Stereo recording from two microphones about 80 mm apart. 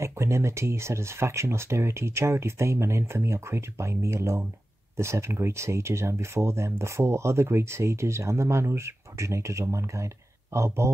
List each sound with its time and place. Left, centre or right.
0.0 s speech: right